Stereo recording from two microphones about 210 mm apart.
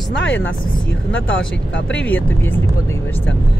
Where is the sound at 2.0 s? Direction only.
10° left (ahead or behind).